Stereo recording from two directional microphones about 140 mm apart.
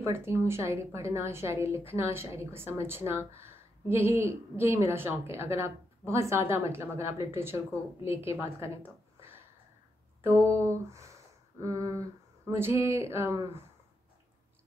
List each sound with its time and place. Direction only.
0.0 s a woman's voice: 20° right (ahead or behind)
10.2 s a woman's voice: 20° right (ahead or behind)